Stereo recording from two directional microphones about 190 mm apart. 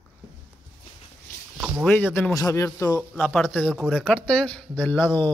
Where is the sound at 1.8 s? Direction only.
10° left (ahead or behind).